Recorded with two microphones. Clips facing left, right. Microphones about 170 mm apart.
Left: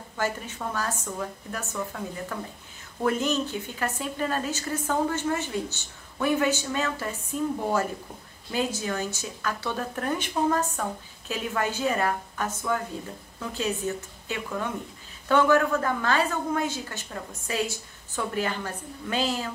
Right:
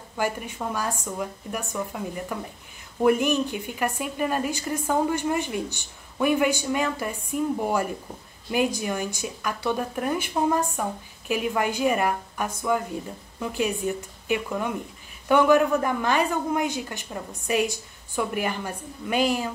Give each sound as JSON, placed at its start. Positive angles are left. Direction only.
{"t": 0.2, "sound": "speech", "side_deg": -15}